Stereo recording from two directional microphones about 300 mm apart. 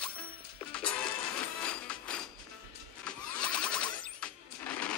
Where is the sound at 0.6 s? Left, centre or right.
Centre.